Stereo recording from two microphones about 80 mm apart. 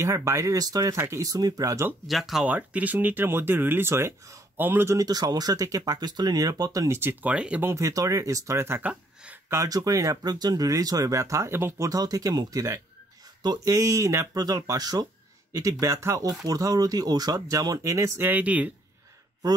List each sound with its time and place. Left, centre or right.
0.0 s speech: right
0.9 s speech: right
2.0 s speech: centre
2.4 s speech: centre
4.9 s speech: right
7.2 s speech: centre
7.7 s speech: right
8.8 s speech: centre
9.5 s speech: right
11.8 s speech: right
13.4 s speech: right
13.7 s speech: right
15.5 s speech: right; by 18.7 s centre